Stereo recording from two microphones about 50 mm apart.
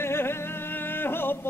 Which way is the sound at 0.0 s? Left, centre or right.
Left.